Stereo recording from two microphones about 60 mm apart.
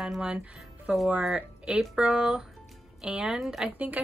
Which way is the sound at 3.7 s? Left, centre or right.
Right.